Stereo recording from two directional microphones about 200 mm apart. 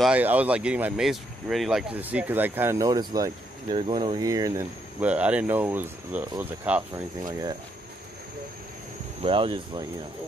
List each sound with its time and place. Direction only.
0.0 s speech: 5° right (ahead or behind)
9.2 s speech: 25° right (ahead or behind)